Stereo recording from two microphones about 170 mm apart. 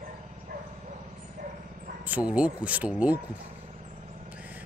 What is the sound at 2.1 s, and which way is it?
Speech, 5° right (ahead or behind).